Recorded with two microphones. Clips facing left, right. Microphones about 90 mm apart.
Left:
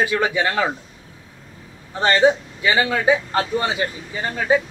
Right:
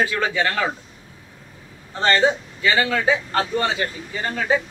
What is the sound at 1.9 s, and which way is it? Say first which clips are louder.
A man's voice: left 2 dB; 15° left (ahead or behind).